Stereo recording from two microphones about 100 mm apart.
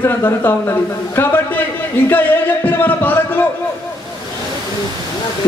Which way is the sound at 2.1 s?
20° left (ahead or behind).